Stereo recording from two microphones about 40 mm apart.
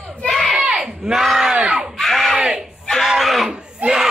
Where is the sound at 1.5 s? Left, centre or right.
Right.